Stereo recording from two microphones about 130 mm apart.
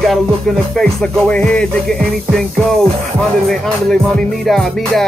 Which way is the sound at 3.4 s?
5° left (ahead or behind).